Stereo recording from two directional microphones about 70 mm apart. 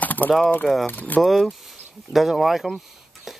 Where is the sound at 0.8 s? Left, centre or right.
Left.